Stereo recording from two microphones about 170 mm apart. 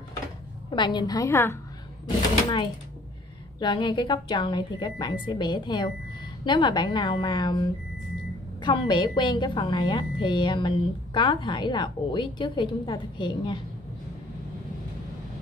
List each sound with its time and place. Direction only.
0.7 s a woman's voice: 25° left (ahead or behind)
3.5 s a woman's voice: 25° left (ahead or behind)
8.6 s a woman's voice: 25° left (ahead or behind)